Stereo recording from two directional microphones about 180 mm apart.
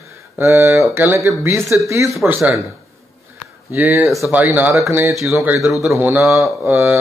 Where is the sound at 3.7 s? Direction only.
15° right (ahead or behind).